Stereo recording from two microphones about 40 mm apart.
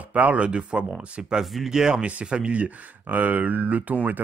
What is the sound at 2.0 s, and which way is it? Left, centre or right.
Speech, right.